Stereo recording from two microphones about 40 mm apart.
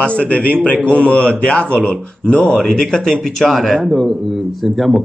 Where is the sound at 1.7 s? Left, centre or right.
Left.